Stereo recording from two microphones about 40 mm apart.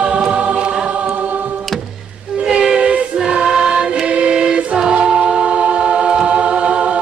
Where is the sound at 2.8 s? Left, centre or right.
Right.